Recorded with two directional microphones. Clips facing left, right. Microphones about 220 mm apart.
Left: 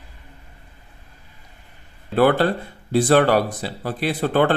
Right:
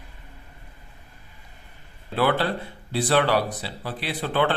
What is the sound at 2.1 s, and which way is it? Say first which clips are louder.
Speech: left 6 dB; 45° left (ahead or behind).